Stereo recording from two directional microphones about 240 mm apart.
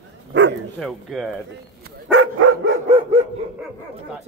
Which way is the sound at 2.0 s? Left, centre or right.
Right.